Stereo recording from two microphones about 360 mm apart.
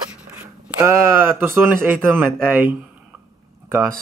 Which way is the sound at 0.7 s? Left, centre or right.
Centre.